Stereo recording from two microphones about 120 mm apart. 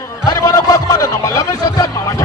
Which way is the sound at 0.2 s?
30° left (ahead or behind).